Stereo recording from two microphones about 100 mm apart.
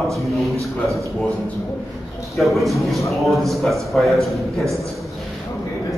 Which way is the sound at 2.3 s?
Centre (ahead or behind).